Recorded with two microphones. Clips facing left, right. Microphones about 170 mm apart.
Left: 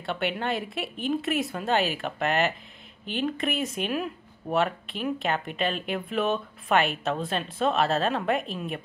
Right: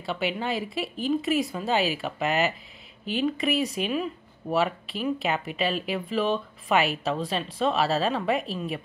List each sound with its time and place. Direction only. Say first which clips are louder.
0.0 s speech: even; centre (ahead or behind)